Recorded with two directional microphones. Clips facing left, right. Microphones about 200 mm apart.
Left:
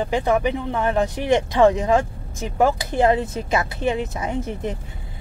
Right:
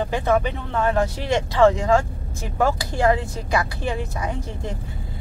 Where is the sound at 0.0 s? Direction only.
15° left (ahead or behind).